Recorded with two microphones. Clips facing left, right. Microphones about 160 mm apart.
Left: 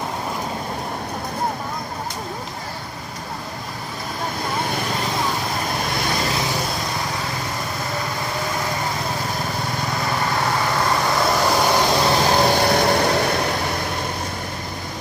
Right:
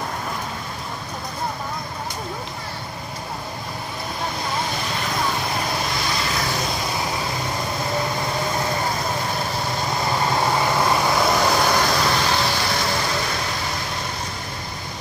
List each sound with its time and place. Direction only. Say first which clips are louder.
10.8 s vehicle: right 1 dB; 5° right (ahead or behind); by 12.0 s 15° left (ahead or behind)
12.1 s vehicle: left 5 dB; 40° left (ahead or behind); by 13.6 s 60° left (ahead or behind)